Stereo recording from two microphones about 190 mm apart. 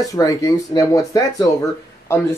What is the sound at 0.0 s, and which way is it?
Speech, 20° left (ahead or behind).